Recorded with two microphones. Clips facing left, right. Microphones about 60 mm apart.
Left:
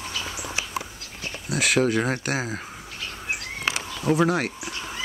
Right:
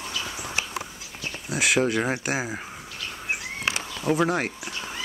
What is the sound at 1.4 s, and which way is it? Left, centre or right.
Speech, centre.